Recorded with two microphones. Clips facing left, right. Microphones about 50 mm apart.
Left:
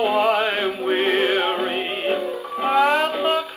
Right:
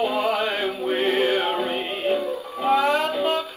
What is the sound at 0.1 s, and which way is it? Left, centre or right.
Music, left.